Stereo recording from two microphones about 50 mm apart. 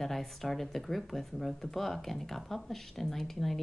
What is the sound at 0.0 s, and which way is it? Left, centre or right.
Speech, centre.